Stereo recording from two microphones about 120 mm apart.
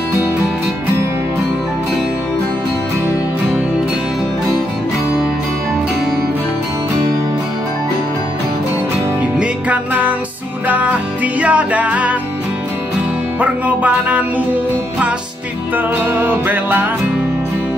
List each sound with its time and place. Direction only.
9.2 s music: 10° right (ahead or behind)
13.4 s music: 10° right (ahead or behind)
15.7 s music: 15° right (ahead or behind)